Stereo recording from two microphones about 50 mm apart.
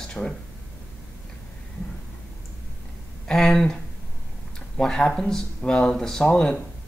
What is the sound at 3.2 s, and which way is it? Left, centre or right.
Speech, centre.